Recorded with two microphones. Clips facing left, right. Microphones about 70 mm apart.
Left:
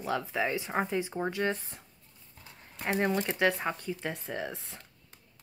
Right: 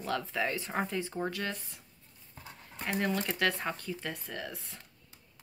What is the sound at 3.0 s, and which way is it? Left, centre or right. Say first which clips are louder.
Speech: left 3 dB; centre.